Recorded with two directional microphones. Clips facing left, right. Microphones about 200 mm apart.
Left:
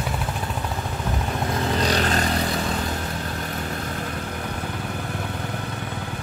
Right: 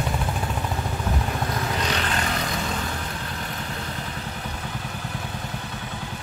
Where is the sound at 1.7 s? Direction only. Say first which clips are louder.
Left 4 dB; 35° left (ahead or behind).